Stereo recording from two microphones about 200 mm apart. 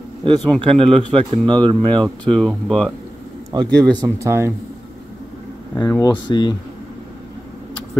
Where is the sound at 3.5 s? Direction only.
20° right (ahead or behind).